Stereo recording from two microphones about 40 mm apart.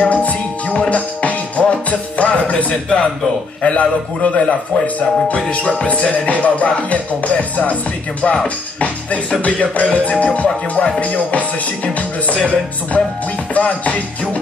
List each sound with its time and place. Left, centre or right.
0.0 s music: left
8.7 s music: left